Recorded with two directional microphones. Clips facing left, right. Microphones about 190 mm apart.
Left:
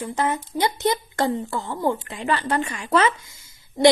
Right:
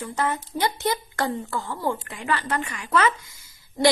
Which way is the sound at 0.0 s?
20° left (ahead or behind).